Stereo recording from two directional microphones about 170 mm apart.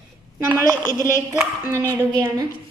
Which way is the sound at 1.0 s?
15° right (ahead or behind).